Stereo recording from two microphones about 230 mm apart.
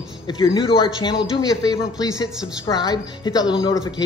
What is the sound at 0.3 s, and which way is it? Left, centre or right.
A woman's voice, left.